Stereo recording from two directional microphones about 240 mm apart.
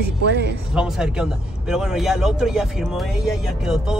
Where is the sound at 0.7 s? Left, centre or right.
Centre.